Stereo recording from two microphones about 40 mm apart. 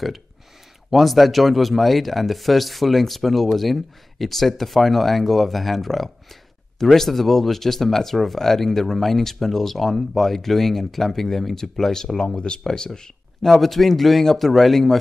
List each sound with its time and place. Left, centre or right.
0.8 s speech: centre
12.4 s speech: centre
13.4 s speech: centre